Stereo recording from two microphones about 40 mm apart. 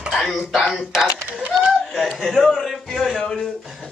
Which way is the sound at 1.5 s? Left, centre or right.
Right.